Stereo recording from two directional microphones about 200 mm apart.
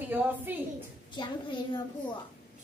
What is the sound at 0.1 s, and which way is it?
Speech, 10° right (ahead or behind).